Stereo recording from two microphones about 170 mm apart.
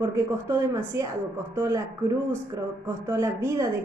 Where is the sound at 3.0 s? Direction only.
15° right (ahead or behind).